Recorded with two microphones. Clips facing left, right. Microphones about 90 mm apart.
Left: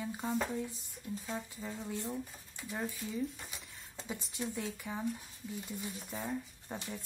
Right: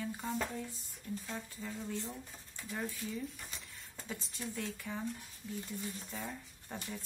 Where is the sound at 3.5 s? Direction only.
10° left (ahead or behind).